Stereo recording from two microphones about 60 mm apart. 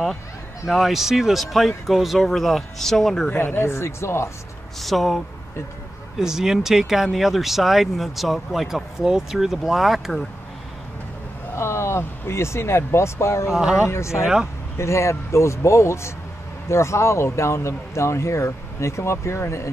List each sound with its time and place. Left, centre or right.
0.7 s speech: centre
3.3 s speech: left
3.6 s speech: left
4.7 s speech: centre
6.1 s speech: centre
11.5 s speech: left
13.5 s speech: centre
13.8 s speech: left
14.2 s speech: centre
14.8 s speech: left